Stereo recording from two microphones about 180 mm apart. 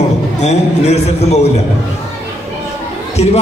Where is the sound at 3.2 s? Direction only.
35° left (ahead or behind).